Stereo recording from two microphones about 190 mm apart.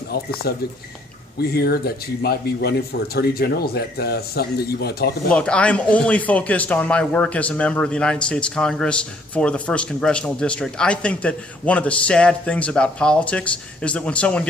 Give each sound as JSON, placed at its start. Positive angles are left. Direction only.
{"t": 0.1, "sound": "speech", "side_deg": 55}
{"t": 5.3, "sound": "speech", "side_deg": 5}